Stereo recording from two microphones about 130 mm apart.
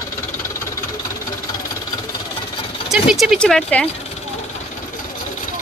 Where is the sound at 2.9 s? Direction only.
5° right (ahead or behind).